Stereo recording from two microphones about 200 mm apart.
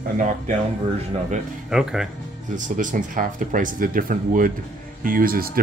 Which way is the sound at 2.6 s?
40° right (ahead or behind).